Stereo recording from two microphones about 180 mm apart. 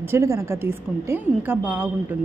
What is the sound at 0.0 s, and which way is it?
Speech, 15° right (ahead or behind).